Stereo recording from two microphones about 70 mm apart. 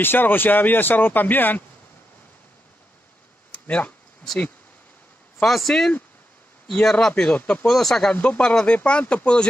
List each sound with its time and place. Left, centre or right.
0.0 s speech: left
3.6 s speech: left
5.4 s speech: centre
8.1 s speech: centre